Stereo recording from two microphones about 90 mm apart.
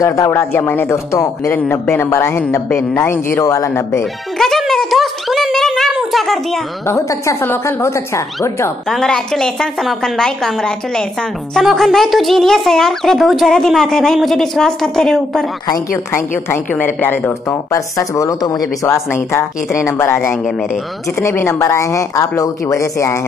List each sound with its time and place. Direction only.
0.0 s a woman's voice: 40° left (ahead or behind)
0.3 s a woman's voice: 25° left (ahead or behind)
4.4 s a sound: 5° left (ahead or behind)
6.9 s a woman's voice: 35° left (ahead or behind)
8.8 s speech: 5° left (ahead or behind)
15.9 s a woman's voice: 25° left (ahead or behind)
17.5 s a woman's voice: 35° left (ahead or behind)
18.9 s a woman's voice: 30° left (ahead or behind)
21.2 s a woman's voice: 30° left (ahead or behind)